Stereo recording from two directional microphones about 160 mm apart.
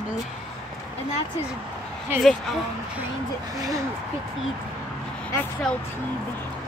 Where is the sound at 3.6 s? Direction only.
20° right (ahead or behind).